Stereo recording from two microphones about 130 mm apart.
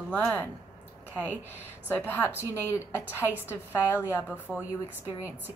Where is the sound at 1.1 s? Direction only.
15° right (ahead or behind).